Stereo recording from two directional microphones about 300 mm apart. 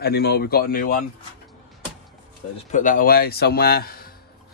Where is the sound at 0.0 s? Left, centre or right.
Left.